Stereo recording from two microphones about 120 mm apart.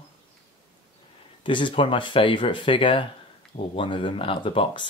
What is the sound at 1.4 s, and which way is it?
Speech, 45° left (ahead or behind).